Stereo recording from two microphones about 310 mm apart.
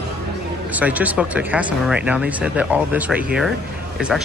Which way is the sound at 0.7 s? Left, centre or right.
Centre.